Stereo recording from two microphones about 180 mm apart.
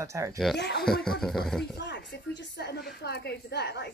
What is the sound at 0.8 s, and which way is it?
Speech, 5° left (ahead or behind).